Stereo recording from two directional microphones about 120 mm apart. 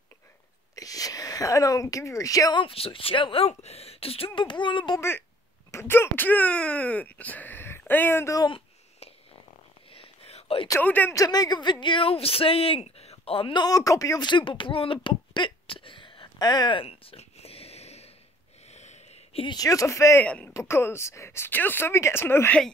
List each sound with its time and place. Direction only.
0.7 s speech: 30° left (ahead or behind)
2.6 s speech: 50° left (ahead or behind)
4.4 s a sound: 40° left (ahead or behind)
5.7 s speech: 20° left (ahead or behind)
8.4 s a sound: 45° left (ahead or behind)
10.8 s speech: 15° left (ahead or behind)
11.1 s speech: 35° left (ahead or behind)
16.3 s a sound: 35° left (ahead or behind); by 18.1 s 60° left (ahead or behind)
18.7 s wheeze: 70° left (ahead or behind)
19.4 s speech: 35° left (ahead or behind)
20.2 s speech: 10° left (ahead or behind)
20.5 s speech: 20° left (ahead or behind)